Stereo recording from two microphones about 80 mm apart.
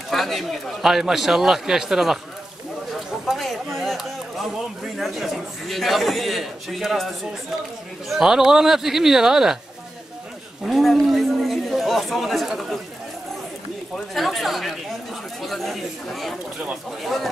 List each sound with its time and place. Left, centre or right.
0.1 s a man's voice: centre
3.3 s a sound: centre
4.9 s a man's voice: centre
10.6 s speech: centre
13.9 s a man's voice: centre